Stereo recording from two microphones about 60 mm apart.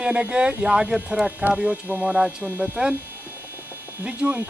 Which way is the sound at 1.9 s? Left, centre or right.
Right.